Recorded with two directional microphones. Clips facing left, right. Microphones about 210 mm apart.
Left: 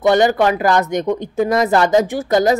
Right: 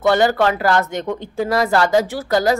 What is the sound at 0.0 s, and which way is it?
A woman's voice, 15° left (ahead or behind).